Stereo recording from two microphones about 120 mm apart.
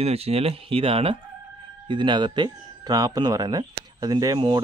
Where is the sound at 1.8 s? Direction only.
40° right (ahead or behind).